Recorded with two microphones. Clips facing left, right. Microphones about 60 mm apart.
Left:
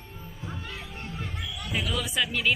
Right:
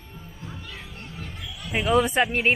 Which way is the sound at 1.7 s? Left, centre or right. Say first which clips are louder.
Right 10 dB; right.